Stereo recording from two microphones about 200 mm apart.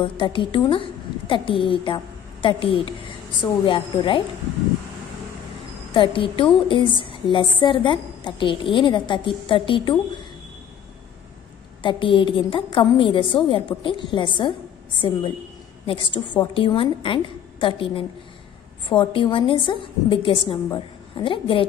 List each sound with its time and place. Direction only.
0.0 s a woman's voice: 25° left (ahead or behind)
5.9 s a woman's voice: 25° left (ahead or behind)
11.8 s a woman's voice: 25° left (ahead or behind)